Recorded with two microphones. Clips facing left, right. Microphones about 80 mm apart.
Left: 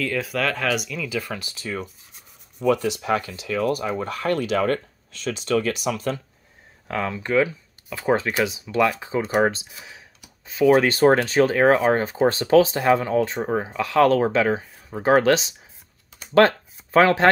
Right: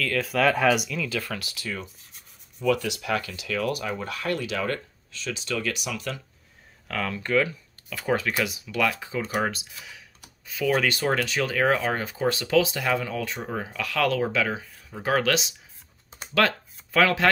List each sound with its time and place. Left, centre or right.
0.2 s speech: centre
1.0 s speech: centre; by 6.2 s left
6.9 s speech: centre